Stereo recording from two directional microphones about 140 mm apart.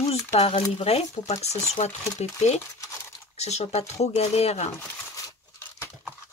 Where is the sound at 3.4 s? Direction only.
50° left (ahead or behind).